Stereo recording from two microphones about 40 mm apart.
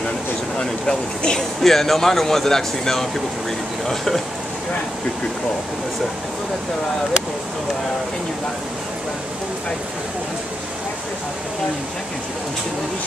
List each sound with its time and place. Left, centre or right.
0.6 s speech: left
1.6 s speech: centre